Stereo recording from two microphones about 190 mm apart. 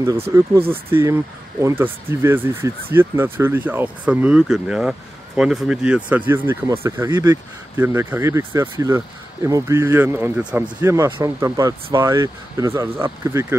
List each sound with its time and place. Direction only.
0.3 s speech: 10° right (ahead or behind)